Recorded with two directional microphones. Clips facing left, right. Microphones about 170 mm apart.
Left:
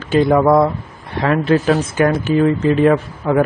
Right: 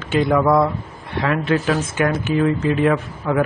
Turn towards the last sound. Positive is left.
turn(degrees=35)  # may be behind; listen again after turning